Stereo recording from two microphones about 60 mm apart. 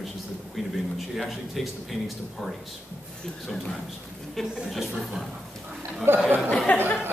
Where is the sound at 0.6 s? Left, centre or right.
Centre.